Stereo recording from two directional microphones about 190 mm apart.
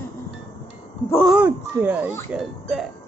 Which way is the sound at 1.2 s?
5° right (ahead or behind).